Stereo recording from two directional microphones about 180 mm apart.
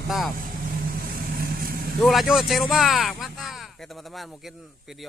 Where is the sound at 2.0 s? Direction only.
Centre (ahead or behind).